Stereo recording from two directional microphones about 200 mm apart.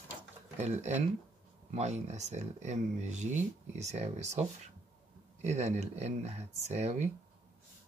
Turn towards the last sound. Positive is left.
turn(degrees=-35)  # may be behind; listen again after turning